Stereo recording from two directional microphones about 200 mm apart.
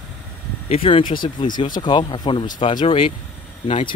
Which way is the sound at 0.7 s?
30° left (ahead or behind).